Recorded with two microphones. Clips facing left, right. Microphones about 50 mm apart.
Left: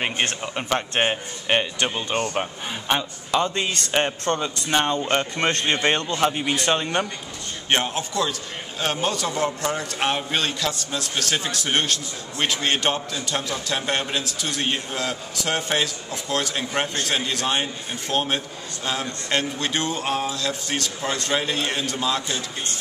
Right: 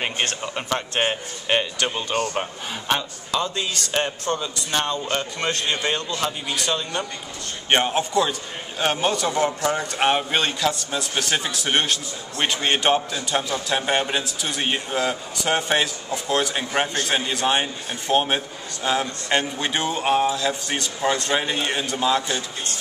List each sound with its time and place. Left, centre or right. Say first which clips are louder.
0.4 s speech: left 1 dB; centre
2.0 s a man's voice: even; left
3.3 s a man's voice: left 3 dB; left
7.7 s a man's voice: right 4 dB; centre